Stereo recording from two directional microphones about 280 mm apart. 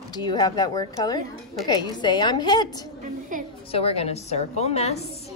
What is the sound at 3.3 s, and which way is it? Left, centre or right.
Speech, right.